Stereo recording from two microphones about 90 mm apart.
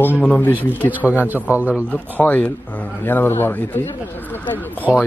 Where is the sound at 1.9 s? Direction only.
20° left (ahead or behind).